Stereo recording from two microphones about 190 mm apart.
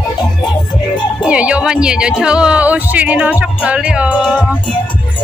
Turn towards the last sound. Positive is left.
turn(degrees=-5)  # may be behind; listen again after turning